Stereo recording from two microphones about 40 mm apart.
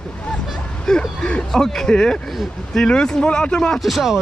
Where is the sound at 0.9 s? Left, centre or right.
Centre.